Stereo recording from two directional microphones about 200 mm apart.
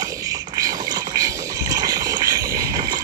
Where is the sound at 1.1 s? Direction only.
20° right (ahead or behind).